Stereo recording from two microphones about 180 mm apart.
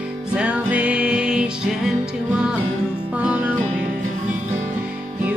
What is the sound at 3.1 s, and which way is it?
Music, 10° right (ahead or behind).